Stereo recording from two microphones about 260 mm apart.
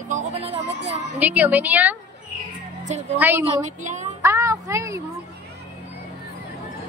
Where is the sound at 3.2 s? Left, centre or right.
Centre.